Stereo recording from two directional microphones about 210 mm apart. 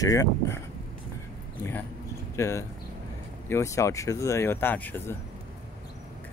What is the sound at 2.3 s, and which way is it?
Speech, 15° left (ahead or behind).